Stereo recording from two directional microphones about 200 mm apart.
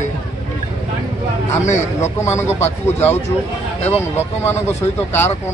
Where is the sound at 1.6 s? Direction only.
35° left (ahead or behind).